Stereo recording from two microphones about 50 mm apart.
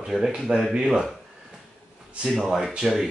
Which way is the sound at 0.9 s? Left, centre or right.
Centre.